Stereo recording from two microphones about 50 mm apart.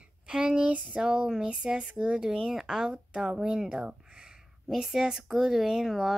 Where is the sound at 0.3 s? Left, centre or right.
Centre.